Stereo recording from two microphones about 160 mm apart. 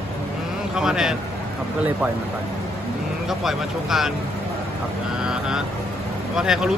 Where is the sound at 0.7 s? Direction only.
5° right (ahead or behind).